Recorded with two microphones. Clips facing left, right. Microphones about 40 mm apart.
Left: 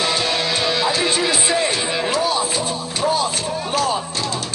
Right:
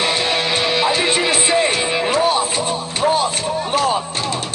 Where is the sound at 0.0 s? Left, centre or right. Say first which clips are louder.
Right 2 dB; right.